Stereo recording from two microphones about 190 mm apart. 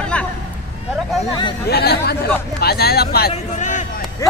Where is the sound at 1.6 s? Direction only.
55° left (ahead or behind).